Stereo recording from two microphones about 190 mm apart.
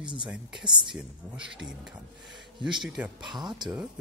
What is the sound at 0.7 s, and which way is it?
Speech, 25° right (ahead or behind).